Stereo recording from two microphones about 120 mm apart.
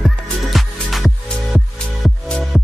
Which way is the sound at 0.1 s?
Centre (ahead or behind).